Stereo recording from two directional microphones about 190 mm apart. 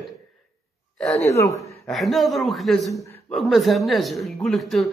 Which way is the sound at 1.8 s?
Centre (ahead or behind).